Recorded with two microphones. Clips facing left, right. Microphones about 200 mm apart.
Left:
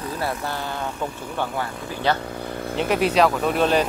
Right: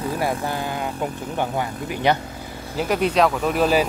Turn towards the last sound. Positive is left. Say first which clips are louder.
# right 1 dB
turn(degrees=-5)  # may be behind; listen again after turning